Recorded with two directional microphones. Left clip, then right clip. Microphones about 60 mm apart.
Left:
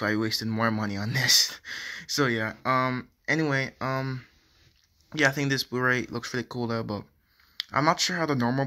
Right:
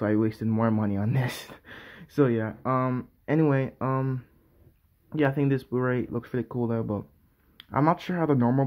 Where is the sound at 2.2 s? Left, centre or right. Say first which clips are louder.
Right 2 dB; centre.